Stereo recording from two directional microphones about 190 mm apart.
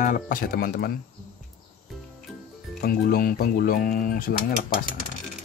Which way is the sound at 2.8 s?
50° left (ahead or behind).